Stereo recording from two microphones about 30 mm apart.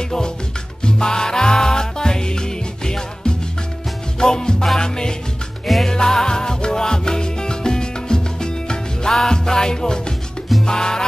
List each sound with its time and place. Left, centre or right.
0.8 s music: left
10.6 s salsa music: left